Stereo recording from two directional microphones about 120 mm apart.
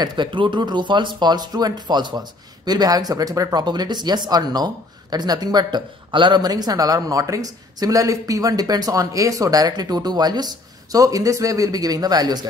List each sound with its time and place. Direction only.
0.0 s speech: 40° right (ahead or behind)